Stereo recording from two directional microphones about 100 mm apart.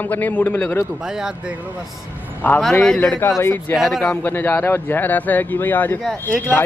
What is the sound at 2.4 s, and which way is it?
Speech, 20° left (ahead or behind).